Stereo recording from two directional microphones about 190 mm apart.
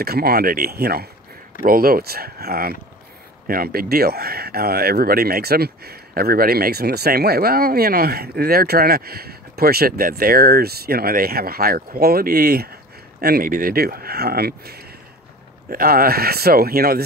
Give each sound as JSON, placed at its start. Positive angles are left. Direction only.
{"t": 0.0, "sound": "speech", "side_deg": -55}